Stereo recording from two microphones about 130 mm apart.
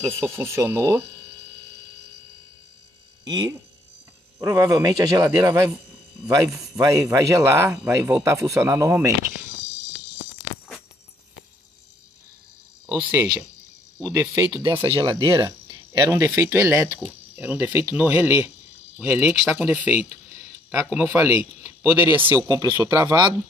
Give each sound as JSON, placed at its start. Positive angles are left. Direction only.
{"t": 0.2, "sound": "speech", "side_deg": -20}
{"t": 3.3, "sound": "speech", "side_deg": -30}
{"t": 13.1, "sound": "speech", "side_deg": -25}
{"t": 15.2, "sound": "cricket", "side_deg": -25}
{"t": 16.1, "sound": "speech", "side_deg": -20}
{"t": 22.5, "sound": "speech", "side_deg": -25}